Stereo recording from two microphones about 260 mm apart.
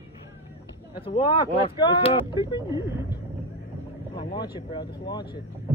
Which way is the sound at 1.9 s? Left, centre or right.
Centre.